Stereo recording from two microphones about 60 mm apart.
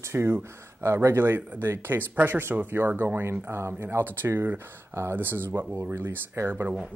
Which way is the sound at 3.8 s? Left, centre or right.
Right.